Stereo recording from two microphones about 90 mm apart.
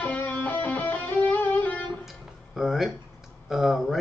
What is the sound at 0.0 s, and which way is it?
Music, 20° left (ahead or behind).